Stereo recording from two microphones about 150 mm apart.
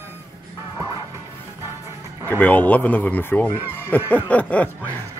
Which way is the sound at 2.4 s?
10° left (ahead or behind).